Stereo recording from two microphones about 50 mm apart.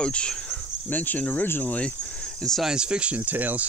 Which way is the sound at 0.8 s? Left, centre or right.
Left.